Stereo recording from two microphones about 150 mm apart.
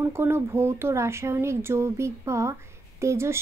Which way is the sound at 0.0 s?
15° right (ahead or behind).